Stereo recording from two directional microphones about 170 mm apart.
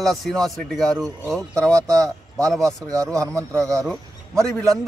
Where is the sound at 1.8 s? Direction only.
20° right (ahead or behind).